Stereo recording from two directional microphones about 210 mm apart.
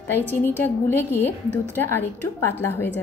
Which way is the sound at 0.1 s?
10° left (ahead or behind).